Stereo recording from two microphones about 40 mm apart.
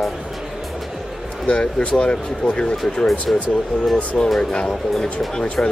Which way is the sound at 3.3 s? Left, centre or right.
Centre.